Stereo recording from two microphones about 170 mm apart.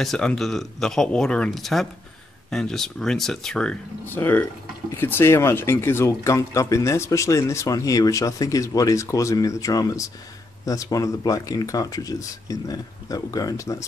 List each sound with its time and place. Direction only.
0.0 s speech: 5° left (ahead or behind); by 13.8 s 20° left (ahead or behind)